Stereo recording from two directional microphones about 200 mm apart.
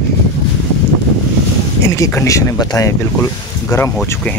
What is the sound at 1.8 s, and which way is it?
Speech, 15° left (ahead or behind).